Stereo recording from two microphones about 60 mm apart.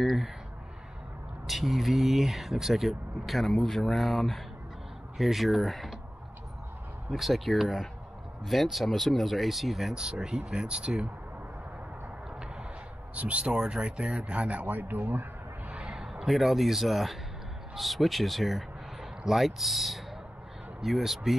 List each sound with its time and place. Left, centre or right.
0.0 s speech: centre
1.5 s speech: centre
7.1 s speech: centre
13.1 s speech: right
15.7 s speech: centre